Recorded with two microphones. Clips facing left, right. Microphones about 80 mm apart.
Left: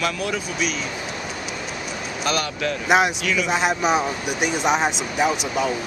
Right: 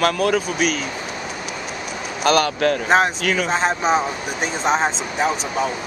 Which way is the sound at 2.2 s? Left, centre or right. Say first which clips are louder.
Right 8 dB; right.